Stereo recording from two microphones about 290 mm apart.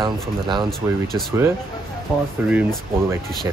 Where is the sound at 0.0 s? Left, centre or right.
Centre.